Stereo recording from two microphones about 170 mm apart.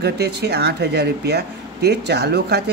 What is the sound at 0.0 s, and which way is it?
Speech, 75° right (ahead or behind).